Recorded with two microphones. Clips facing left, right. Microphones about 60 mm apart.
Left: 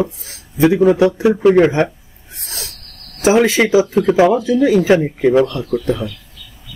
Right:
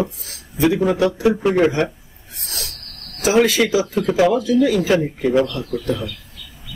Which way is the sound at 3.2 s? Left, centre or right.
Left.